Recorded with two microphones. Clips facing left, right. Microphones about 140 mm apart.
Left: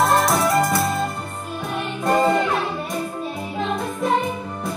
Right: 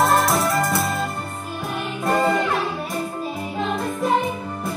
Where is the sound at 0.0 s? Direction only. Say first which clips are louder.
Left 1 dB; centre (ahead or behind).